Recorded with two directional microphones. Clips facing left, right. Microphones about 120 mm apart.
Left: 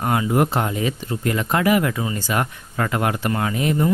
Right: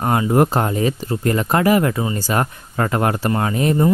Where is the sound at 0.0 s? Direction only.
35° right (ahead or behind).